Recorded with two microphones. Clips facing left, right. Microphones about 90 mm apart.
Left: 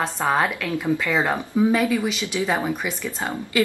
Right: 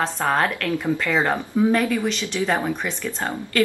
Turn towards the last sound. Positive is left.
turn(degrees=15)  # may be behind; listen again after turning